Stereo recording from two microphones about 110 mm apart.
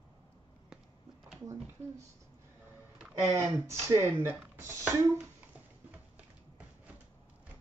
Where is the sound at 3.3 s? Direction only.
20° right (ahead or behind).